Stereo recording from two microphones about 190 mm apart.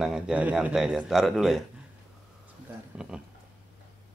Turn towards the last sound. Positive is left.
turn(degrees=-5)  # may be behind; listen again after turning